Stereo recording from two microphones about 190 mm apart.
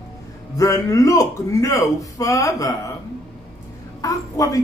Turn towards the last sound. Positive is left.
turn(degrees=15)  # may be behind; listen again after turning